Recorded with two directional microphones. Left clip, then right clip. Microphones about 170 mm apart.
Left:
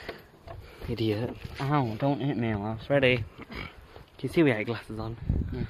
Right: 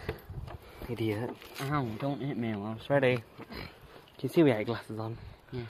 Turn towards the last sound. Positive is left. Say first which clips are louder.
# left 6 dB
turn(degrees=5)  # may be behind; listen again after turning